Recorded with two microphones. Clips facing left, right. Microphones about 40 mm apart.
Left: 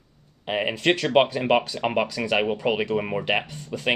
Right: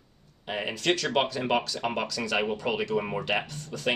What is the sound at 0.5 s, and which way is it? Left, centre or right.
Speech, left.